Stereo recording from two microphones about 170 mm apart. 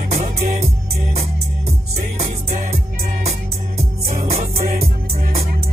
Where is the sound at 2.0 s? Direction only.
60° right (ahead or behind).